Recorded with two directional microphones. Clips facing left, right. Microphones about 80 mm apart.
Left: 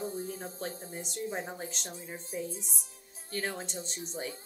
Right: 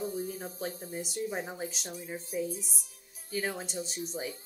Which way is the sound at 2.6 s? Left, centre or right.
Left.